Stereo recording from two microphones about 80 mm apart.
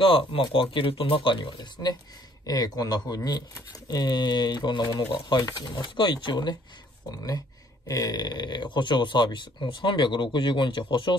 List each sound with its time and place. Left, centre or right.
0.0 s speech: left
6.2 s speech: left
7.9 s speech: left